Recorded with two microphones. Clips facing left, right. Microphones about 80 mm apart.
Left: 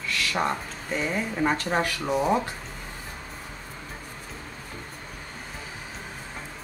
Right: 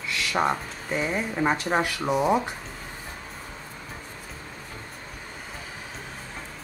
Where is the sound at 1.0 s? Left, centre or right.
Centre.